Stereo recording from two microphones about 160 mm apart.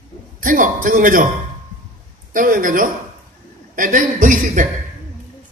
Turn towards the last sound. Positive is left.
turn(degrees=-55)  # may be behind; listen again after turning